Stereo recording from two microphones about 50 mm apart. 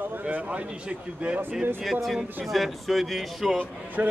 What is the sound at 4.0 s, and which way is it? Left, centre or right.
Speech, right.